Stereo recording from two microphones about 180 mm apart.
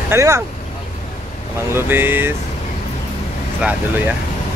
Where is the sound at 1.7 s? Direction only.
10° right (ahead or behind).